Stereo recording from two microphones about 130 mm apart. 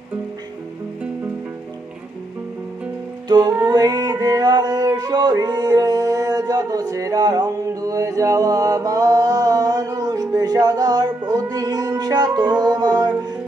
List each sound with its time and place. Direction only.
3.3 s music: 35° right (ahead or behind)